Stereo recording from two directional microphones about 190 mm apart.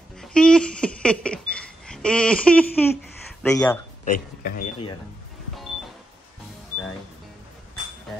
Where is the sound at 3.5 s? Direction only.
15° left (ahead or behind).